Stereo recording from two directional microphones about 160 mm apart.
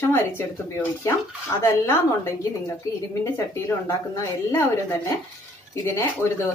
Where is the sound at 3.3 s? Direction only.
15° left (ahead or behind).